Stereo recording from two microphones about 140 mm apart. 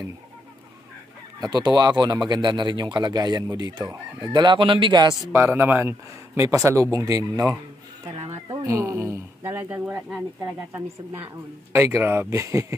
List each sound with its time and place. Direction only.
1.4 s speech: 30° right (ahead or behind)
5.3 s speech: 15° right (ahead or behind)
8.6 s speech: 20° right (ahead or behind)
11.7 s speech: 15° right (ahead or behind)